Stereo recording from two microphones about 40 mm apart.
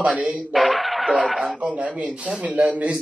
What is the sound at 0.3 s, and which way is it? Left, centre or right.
Speech, centre.